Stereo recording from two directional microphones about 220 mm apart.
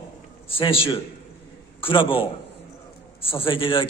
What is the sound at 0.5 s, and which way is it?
A man's voice, 25° left (ahead or behind).